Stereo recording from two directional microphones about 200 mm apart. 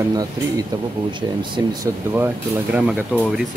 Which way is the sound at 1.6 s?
15° right (ahead or behind).